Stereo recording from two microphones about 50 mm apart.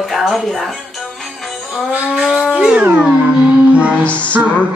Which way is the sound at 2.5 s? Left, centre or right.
Centre.